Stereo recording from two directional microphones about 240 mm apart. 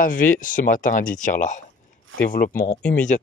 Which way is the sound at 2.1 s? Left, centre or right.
Right.